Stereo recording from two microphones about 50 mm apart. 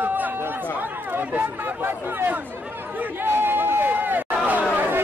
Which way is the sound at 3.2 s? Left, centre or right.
Right.